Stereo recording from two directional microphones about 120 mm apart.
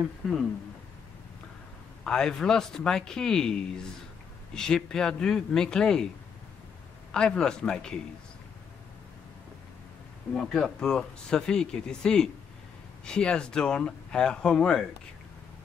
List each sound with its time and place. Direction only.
0.2 s speech: centre (ahead or behind)
2.0 s speech: 5° left (ahead or behind)
7.2 s speech: 5° left (ahead or behind)
10.3 s speech: 5° left (ahead or behind)